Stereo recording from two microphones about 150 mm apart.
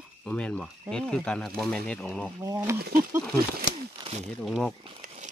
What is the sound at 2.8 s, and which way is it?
Speech, 75° right (ahead or behind).